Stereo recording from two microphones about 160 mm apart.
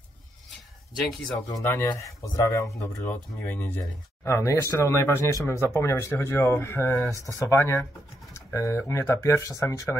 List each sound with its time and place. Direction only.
1.5 s speech: 15° left (ahead or behind)